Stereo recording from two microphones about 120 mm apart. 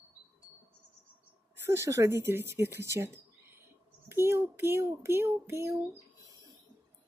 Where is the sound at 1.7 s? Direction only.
25° right (ahead or behind).